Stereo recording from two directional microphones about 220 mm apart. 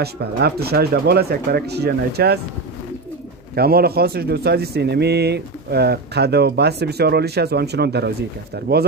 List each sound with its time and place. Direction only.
0.0 s speech: 45° right (ahead or behind)
3.5 s speech: 45° right (ahead or behind)